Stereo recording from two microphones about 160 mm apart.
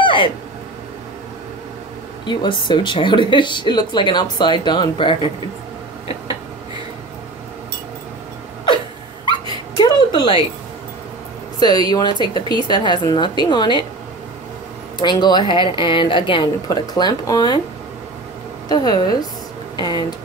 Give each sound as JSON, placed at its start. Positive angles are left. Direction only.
{"t": 0.0, "sound": "a sound", "side_deg": 30}
{"t": 2.2, "sound": "speech", "side_deg": 30}
{"t": 9.8, "sound": "a sound", "side_deg": 30}
{"t": 11.9, "sound": "speech", "side_deg": 25}
{"t": 15.0, "sound": "a woman's voice", "side_deg": 25}
{"t": 18.7, "sound": "speech", "side_deg": 25}